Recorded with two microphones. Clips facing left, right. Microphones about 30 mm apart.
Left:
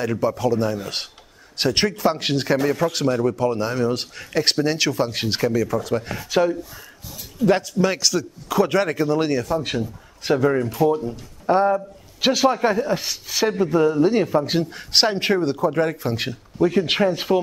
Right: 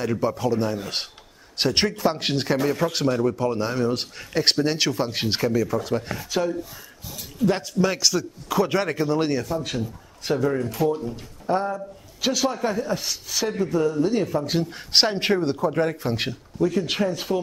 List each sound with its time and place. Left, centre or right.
0.2 s a man's voice: centre
6.1 s a man's voice: centre
10.2 s a man's voice: left
14.6 s a man's voice: centre
16.5 s a man's voice: left